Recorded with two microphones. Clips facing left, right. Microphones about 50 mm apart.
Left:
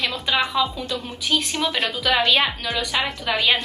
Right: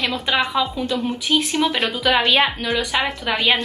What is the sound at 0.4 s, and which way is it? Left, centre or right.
A woman's voice, centre.